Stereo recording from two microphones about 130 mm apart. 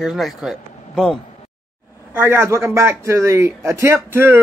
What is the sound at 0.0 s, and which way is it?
Speech, centre (ahead or behind).